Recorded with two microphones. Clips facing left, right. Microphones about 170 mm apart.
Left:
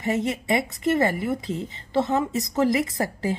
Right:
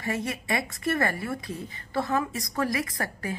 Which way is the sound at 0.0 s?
20° left (ahead or behind).